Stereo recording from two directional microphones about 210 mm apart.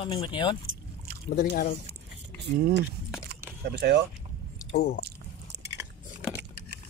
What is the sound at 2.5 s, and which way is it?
Speech, 55° right (ahead or behind).